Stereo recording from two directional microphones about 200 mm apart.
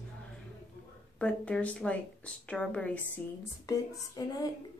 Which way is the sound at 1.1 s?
5° left (ahead or behind).